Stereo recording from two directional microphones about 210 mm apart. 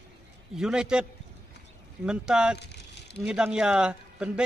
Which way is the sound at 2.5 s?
55° left (ahead or behind).